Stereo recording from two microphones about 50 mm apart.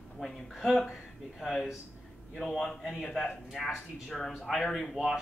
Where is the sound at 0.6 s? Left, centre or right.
Centre.